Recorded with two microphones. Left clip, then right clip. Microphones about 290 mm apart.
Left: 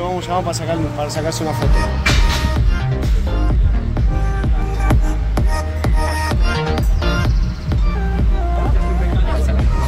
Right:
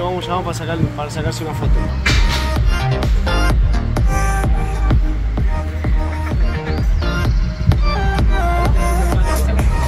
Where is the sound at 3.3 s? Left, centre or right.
Right.